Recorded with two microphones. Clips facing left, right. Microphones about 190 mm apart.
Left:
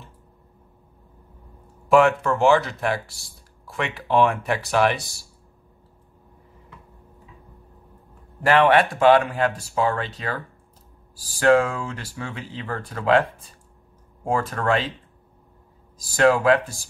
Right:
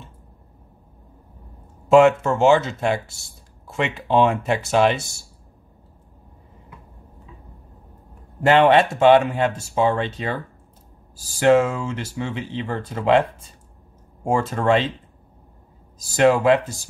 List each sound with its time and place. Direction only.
1.9 s speech: 25° right (ahead or behind)
8.4 s speech: 25° right (ahead or behind)
14.2 s speech: 25° right (ahead or behind)
16.2 s speech: 20° right (ahead or behind)